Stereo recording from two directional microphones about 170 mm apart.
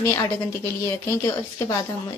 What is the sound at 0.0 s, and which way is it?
Speech, 15° left (ahead or behind).